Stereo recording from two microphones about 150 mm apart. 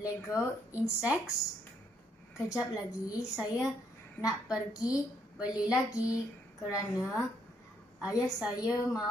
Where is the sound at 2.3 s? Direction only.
20° left (ahead or behind).